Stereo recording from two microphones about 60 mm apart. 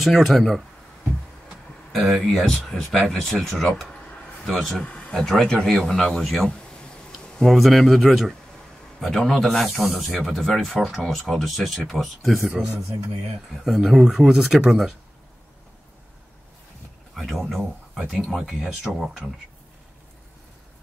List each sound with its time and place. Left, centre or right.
0.0 s speech: centre
1.9 s speech: centre
4.8 s a sound: centre
5.1 s speech: centre
13.7 s speech: centre
17.1 s speech: centre
17.9 s speech: centre